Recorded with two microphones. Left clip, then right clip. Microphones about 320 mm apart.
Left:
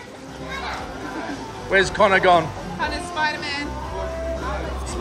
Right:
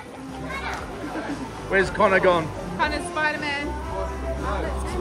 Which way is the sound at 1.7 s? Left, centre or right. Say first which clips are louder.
Left 3 dB; centre.